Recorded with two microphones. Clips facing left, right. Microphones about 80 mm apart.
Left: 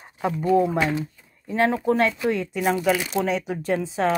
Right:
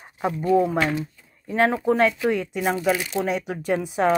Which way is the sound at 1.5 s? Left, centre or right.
Centre.